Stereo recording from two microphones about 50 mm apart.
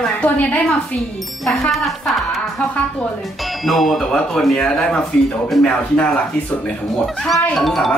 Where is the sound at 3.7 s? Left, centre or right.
Centre.